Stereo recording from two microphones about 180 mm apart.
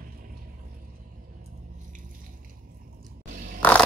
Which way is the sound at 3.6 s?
10° left (ahead or behind).